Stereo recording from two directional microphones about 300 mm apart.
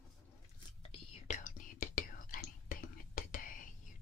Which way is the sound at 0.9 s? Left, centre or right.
Left.